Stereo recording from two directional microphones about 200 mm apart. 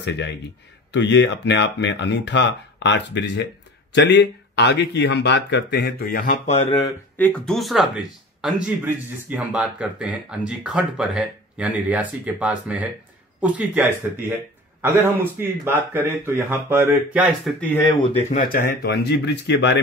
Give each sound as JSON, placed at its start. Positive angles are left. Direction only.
{"t": 0.9, "sound": "speech", "side_deg": 60}
{"t": 7.2, "sound": "a man's voice", "side_deg": 5}
{"t": 17.6, "sound": "speech", "side_deg": 10}
{"t": 18.0, "sound": "speech", "side_deg": 30}
{"t": 18.5, "sound": "speech", "side_deg": 45}